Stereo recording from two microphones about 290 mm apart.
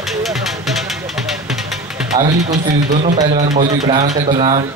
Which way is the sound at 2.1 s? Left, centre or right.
Right.